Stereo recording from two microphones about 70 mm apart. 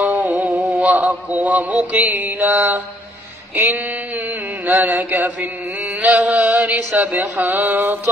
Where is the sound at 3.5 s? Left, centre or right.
Right.